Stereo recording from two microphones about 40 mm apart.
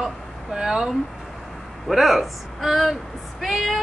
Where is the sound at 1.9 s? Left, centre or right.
Centre.